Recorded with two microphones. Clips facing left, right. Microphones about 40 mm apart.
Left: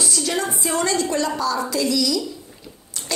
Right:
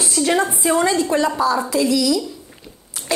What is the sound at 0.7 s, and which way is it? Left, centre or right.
A woman's voice, centre.